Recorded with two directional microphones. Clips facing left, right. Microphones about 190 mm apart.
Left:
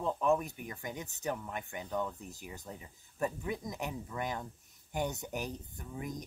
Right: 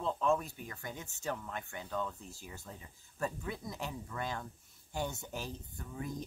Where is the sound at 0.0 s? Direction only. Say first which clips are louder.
Left 2 dB; 15° left (ahead or behind).